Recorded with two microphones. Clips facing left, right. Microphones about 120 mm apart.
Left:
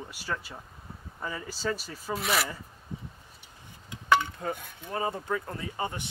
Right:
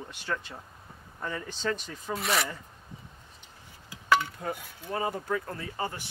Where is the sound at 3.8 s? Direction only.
20° left (ahead or behind).